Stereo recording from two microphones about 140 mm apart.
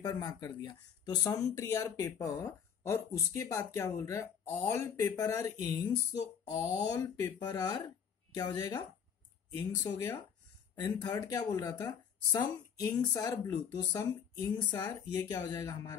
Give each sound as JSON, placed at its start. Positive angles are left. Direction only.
{"t": 0.0, "sound": "speech", "side_deg": 30}
{"t": 12.9, "sound": "speech", "side_deg": 25}